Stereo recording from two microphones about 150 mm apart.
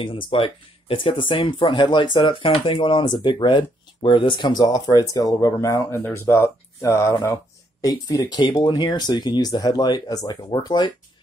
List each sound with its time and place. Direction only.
0.0 s speech: 35° left (ahead or behind)